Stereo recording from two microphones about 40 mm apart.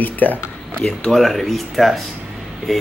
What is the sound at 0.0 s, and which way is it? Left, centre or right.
Speech, left.